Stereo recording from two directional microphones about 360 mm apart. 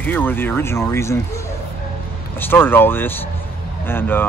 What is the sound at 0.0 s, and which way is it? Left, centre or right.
Speech, centre.